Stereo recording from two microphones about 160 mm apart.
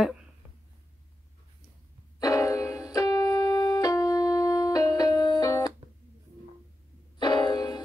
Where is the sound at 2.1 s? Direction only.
20° left (ahead or behind).